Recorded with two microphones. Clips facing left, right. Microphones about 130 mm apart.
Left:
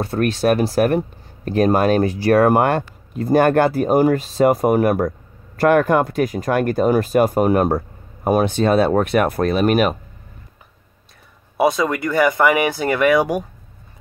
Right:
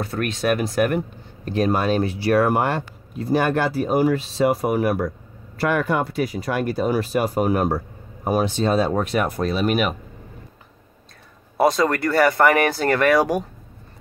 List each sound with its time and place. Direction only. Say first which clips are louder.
0.0 s speech: left 5 dB; 30° left (ahead or behind); by 9.9 s 45° left (ahead or behind)
11.5 s speech: left 1 dB; centre (ahead or behind)